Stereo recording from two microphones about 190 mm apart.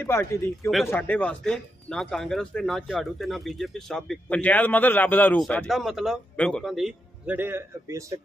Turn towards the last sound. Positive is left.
turn(degrees=-10)  # may be behind; listen again after turning